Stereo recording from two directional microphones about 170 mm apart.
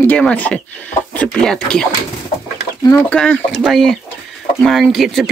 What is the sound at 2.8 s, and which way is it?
Speech, 10° left (ahead or behind).